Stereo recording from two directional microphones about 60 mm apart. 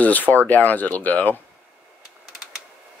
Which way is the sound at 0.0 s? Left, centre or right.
Left.